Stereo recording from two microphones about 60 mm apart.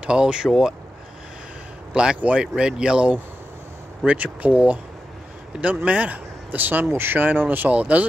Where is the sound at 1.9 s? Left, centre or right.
Centre.